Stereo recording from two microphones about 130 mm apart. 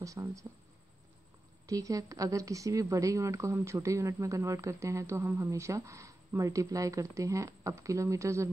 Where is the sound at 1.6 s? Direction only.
25° right (ahead or behind).